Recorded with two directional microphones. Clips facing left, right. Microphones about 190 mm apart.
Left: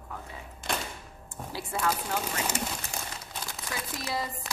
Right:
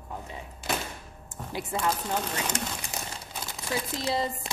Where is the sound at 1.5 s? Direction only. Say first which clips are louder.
Right 1 dB; 20° right (ahead or behind).